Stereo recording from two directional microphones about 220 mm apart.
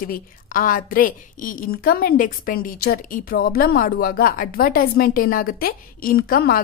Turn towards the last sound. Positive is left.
turn(degrees=45)  # may be behind; listen again after turning